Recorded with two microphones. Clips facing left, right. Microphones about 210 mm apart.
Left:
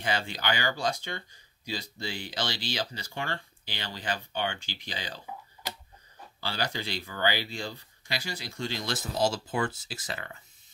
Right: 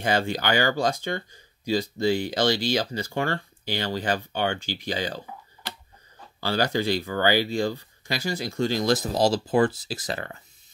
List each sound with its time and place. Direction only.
0.0 s speech: 45° right (ahead or behind)
6.4 s speech: 45° right (ahead or behind)